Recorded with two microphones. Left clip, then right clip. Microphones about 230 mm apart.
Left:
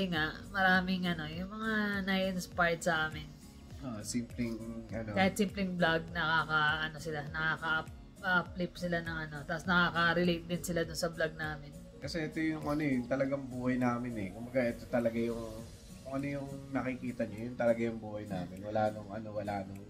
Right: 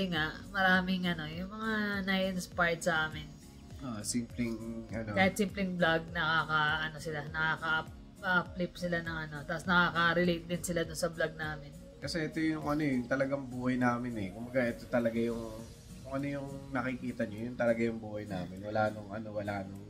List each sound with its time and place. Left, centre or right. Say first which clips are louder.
0.0 s speech: even; centre
3.9 s speech: right 2 dB; centre
5.1 s speech: right 2 dB; centre
12.0 s speech: right 2 dB; centre